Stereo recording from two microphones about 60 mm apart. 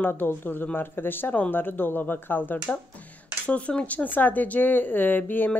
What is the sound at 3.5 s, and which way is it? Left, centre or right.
Speech, left.